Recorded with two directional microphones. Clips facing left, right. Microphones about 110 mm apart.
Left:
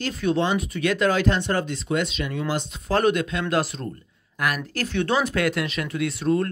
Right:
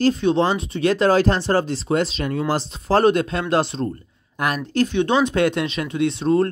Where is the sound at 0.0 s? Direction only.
30° right (ahead or behind).